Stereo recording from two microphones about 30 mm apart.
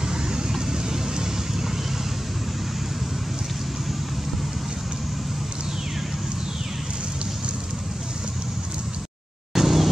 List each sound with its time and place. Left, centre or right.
0.1 s vehicle: right
9.6 s vehicle: centre